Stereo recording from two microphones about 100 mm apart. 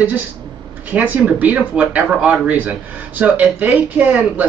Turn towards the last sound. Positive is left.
turn(degrees=-15)  # may be behind; listen again after turning